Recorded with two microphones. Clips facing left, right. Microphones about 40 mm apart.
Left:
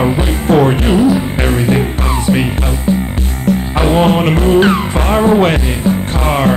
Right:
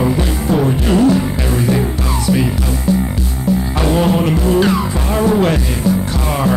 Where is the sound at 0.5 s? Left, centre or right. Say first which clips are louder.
Left 6 dB; left.